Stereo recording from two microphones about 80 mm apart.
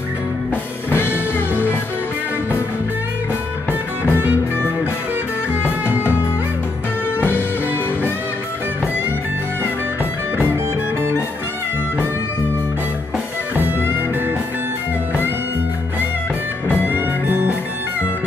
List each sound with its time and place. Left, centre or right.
0.8 s music: left
4.1 s music: right
5.5 s music: left
7.2 s music: left
16.6 s music: left
16.9 s music: right